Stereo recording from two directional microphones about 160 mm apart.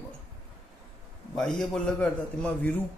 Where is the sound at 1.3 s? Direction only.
5° left (ahead or behind).